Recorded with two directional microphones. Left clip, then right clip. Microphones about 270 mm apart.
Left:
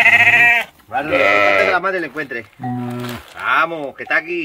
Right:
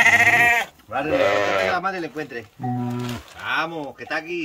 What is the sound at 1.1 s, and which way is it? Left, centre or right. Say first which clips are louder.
Speech: left 7 dB; left.